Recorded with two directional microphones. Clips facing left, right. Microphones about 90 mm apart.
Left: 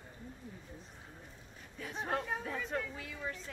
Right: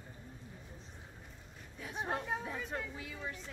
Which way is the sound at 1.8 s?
15° right (ahead or behind).